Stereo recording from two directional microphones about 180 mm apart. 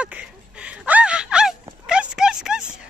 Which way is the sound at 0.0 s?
5° right (ahead or behind).